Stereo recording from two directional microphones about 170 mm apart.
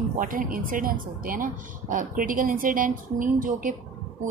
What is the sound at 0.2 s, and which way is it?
A woman's voice, 55° right (ahead or behind).